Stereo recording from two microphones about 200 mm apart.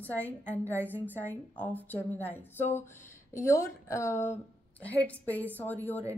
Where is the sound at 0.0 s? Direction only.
10° left (ahead or behind).